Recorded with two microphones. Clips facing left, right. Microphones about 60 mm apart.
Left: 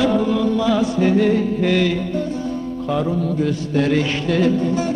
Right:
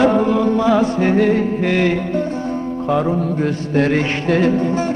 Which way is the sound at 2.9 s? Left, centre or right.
Right.